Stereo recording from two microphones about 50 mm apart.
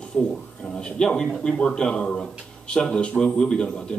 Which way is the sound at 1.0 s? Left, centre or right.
Centre.